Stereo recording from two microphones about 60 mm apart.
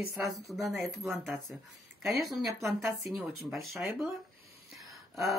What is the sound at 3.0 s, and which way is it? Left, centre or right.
Speech, centre.